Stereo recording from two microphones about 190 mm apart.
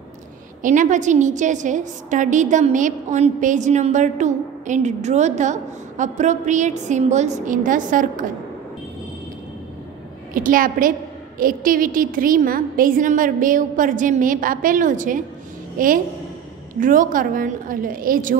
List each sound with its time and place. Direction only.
0.6 s a woman's voice: 40° right (ahead or behind)
10.3 s a woman's voice: 45° right (ahead or behind)